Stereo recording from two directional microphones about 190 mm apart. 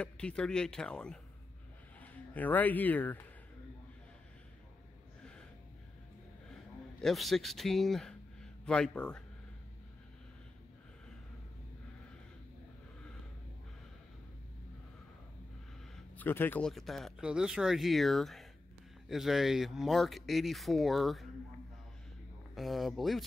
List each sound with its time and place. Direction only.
0.0 s speech: 5° left (ahead or behind)
7.0 s speech: centre (ahead or behind)
16.2 s speech: 10° left (ahead or behind)
22.6 s speech: centre (ahead or behind)